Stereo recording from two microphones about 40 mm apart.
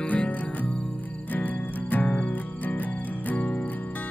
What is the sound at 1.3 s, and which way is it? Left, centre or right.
Music, left.